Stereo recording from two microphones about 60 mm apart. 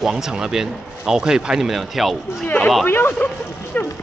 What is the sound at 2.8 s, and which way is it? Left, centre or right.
Speech, left.